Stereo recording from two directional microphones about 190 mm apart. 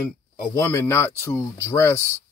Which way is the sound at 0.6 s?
15° left (ahead or behind).